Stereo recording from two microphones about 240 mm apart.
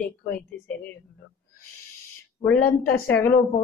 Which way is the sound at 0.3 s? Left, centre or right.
Centre.